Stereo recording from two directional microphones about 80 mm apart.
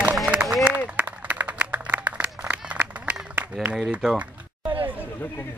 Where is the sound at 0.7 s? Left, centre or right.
Centre.